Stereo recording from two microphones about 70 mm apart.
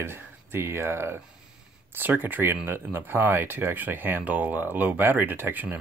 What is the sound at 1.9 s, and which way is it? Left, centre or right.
Speech, right.